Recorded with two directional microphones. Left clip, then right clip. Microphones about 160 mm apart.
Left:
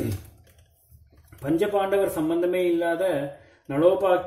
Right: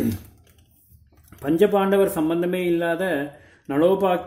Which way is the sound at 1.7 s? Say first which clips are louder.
Right 3 dB; 30° right (ahead or behind).